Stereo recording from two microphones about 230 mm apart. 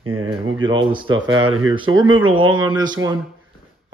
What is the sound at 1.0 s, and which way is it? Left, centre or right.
Speech, right.